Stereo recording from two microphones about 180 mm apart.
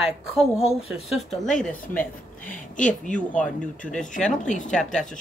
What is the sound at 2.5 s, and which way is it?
Speech, 45° left (ahead or behind).